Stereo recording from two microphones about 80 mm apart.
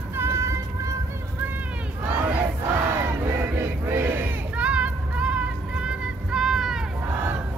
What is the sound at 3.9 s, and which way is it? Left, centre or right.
Crowd, right.